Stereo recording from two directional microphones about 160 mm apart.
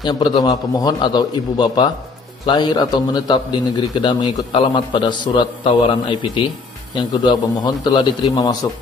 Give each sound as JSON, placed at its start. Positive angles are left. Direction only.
{"t": 0.0, "sound": "a man's voice", "side_deg": 25}